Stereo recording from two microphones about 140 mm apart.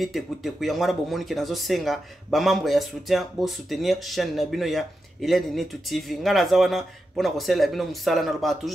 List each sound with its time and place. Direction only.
0.0 s speech: centre (ahead or behind)